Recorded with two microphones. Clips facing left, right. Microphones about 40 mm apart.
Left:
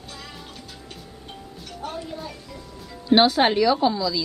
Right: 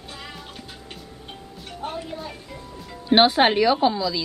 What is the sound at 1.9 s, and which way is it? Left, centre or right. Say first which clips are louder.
A woman's voice: right 1 dB; centre.